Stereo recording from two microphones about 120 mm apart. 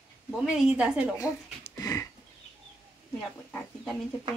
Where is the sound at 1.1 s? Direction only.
20° left (ahead or behind).